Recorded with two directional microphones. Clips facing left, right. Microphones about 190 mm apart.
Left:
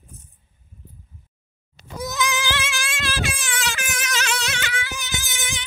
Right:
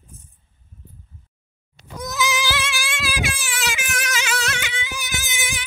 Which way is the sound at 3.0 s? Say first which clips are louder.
Even; 10° right (ahead or behind).